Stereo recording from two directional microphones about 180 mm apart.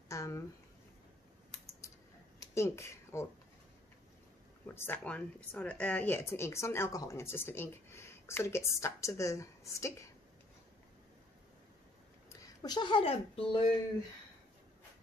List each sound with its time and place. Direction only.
0.1 s a sound: 15° left (ahead or behind)
2.4 s speech: 15° left (ahead or behind)
4.7 s speech: 10° left (ahead or behind)
12.3 s speech: 25° left (ahead or behind)